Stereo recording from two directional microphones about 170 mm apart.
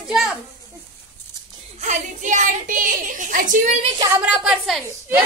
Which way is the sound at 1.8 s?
45° right (ahead or behind).